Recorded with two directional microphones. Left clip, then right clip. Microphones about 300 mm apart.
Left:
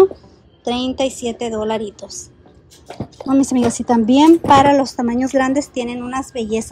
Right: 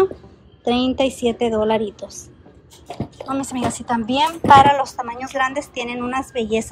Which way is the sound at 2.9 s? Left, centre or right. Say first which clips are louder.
Even; centre.